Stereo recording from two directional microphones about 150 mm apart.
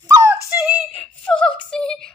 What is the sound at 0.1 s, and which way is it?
Music, 20° right (ahead or behind).